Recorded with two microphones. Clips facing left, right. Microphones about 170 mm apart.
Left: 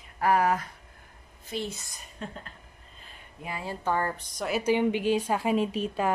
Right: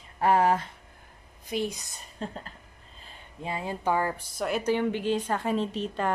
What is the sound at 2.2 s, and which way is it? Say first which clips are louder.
Speech: right 3 dB; 35° right (ahead or behind).